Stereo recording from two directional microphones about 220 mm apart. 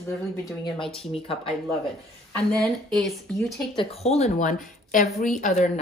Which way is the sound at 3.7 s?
30° left (ahead or behind).